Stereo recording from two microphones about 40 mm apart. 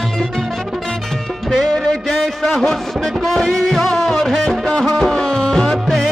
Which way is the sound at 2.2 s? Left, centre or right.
Centre.